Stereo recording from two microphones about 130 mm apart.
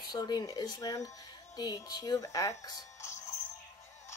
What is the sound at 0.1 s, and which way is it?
Speech, 30° left (ahead or behind).